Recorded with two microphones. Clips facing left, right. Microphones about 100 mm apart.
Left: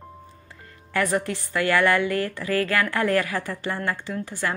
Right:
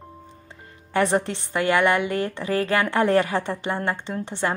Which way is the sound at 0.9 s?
25° right (ahead or behind).